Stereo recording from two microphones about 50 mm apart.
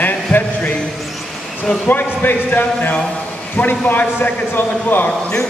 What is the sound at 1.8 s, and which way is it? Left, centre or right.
A man's voice, left.